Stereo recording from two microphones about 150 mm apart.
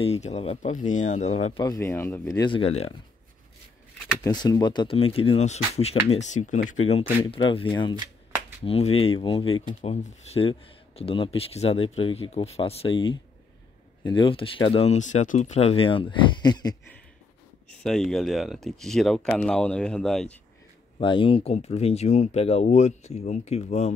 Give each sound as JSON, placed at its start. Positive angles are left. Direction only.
{"t": 0.0, "sound": "speech", "side_deg": 45}
{"t": 1.6, "sound": "speech", "side_deg": 20}
{"t": 2.5, "sound": "speech", "side_deg": 40}
{"t": 4.2, "sound": "speech", "side_deg": 25}
{"t": 4.9, "sound": "speech", "side_deg": 40}
{"t": 6.8, "sound": "speech", "side_deg": 45}
{"t": 17.6, "sound": "speech", "side_deg": 5}
{"t": 21.0, "sound": "speech", "side_deg": 35}